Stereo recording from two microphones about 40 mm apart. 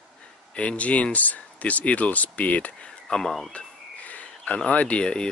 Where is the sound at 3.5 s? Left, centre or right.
Left.